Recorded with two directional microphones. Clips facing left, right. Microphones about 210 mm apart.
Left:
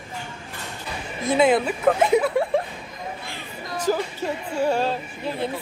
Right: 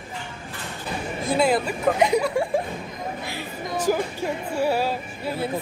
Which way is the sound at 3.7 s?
10° right (ahead or behind).